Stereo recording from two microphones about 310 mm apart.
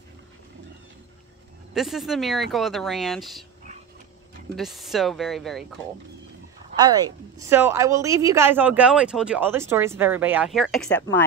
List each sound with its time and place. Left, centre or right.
1.7 s speech: centre
4.6 s speech: centre
6.8 s a woman's voice: centre